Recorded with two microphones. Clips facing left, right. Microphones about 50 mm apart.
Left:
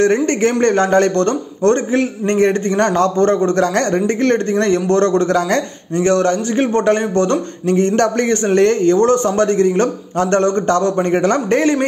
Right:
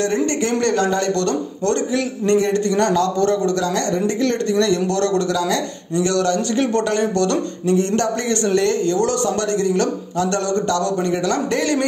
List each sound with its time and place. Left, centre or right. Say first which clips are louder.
0.0 s a man's voice: left 6 dB; left
7.6 s a man's voice: left 4 dB; left